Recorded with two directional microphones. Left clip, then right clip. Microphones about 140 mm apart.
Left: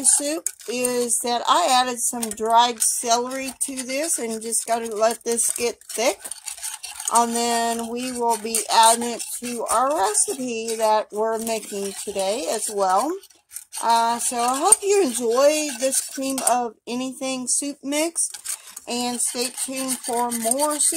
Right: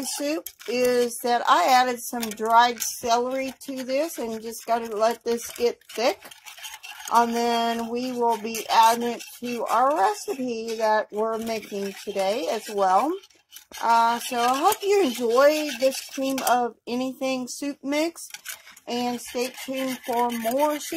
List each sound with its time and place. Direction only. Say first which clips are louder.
0.0 s speech: left 3 dB; 15° left (ahead or behind)
18.9 s speech: left 2 dB; 10° left (ahead or behind)